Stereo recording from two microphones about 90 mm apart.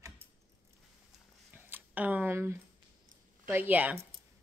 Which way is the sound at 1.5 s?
20° right (ahead or behind).